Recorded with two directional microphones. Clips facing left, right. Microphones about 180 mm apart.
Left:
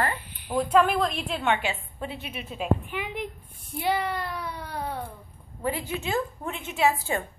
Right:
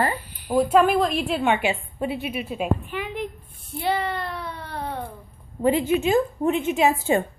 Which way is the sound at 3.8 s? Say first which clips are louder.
Right 2 dB; 10° left (ahead or behind).